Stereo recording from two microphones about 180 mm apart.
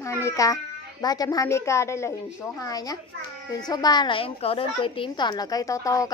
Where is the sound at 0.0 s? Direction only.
15° left (ahead or behind).